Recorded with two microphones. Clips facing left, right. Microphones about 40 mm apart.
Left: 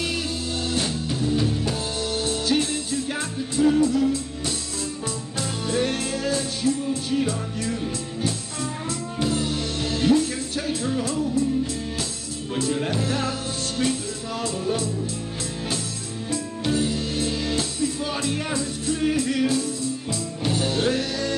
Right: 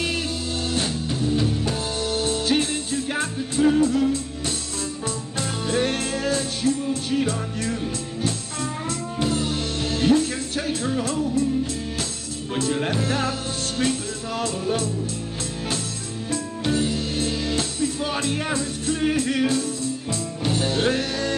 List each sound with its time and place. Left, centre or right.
2.0 s music: right
12.5 s speech: right
13.0 s music: right
16.7 s music: right